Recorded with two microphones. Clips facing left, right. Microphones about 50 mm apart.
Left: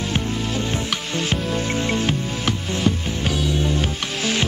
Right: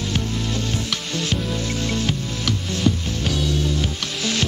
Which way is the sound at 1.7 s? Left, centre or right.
Left.